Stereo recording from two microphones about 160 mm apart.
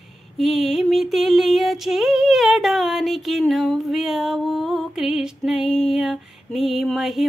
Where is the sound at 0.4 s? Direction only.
Centre (ahead or behind).